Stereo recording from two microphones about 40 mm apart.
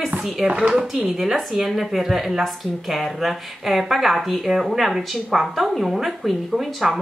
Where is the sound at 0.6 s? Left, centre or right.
Centre.